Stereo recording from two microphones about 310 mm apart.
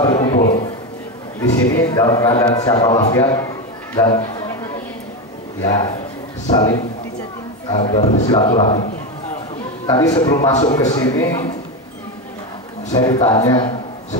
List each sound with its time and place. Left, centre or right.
0.0 s a man's voice: centre
5.6 s a man's voice: centre
7.8 s a man's voice: centre
9.8 s a man's voice: centre
12.9 s a man's voice: centre